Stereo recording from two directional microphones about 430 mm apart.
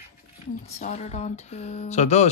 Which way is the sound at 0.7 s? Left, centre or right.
Centre.